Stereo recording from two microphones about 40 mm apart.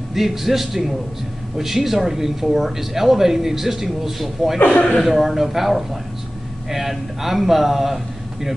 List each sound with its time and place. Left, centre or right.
0.1 s a man's voice: centre
4.6 s speech: left
5.0 s a man's voice: centre